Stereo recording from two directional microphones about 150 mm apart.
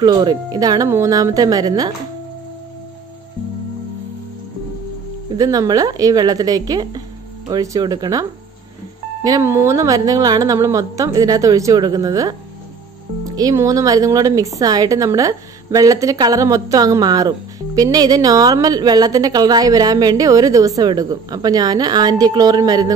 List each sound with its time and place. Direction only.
0.0 s speech: 25° right (ahead or behind)
5.3 s speech: 25° right (ahead or behind)